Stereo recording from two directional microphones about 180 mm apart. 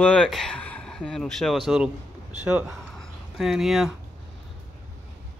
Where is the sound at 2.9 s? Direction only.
Centre (ahead or behind).